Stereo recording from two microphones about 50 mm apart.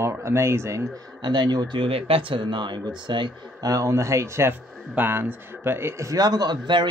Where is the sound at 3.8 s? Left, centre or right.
Right.